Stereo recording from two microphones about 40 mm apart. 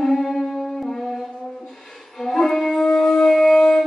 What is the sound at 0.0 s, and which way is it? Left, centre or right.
Music, centre.